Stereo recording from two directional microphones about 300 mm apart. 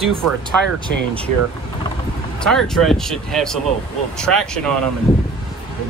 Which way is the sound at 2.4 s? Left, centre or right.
Centre.